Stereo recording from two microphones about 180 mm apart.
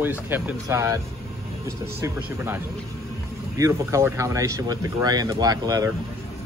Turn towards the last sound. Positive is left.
turn(degrees=-20)  # may be behind; listen again after turning